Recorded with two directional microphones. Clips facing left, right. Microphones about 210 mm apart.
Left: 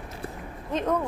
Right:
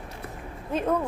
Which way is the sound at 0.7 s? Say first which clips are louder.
Right 1 dB; 10° right (ahead or behind).